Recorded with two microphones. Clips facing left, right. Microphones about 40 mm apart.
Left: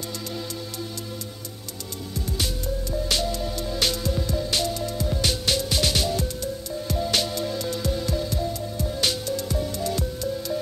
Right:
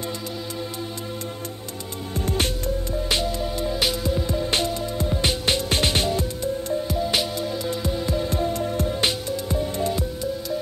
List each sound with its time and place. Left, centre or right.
2.1 s music: right
3.1 s music: right
6.9 s music: centre
8.3 s music: right
8.8 s music: right